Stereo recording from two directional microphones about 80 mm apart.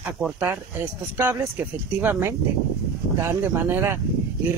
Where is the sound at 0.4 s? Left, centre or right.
Right.